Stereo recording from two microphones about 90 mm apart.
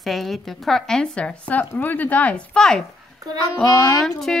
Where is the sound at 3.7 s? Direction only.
35° left (ahead or behind).